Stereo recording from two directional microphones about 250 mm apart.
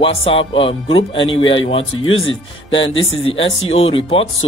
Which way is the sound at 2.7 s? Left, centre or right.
Left.